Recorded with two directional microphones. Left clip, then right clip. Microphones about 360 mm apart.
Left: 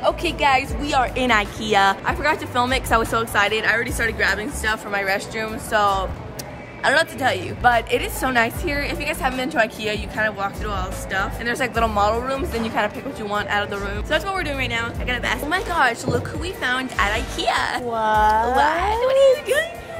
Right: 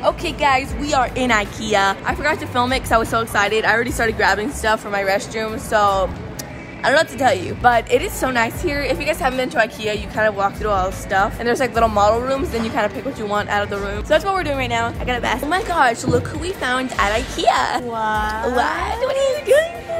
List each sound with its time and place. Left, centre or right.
0.0 s speech: centre
3.6 s speech: centre
4.9 s speech: centre
11.5 s speech: centre
17.9 s speech: centre
18.6 s speech: centre
19.4 s music: centre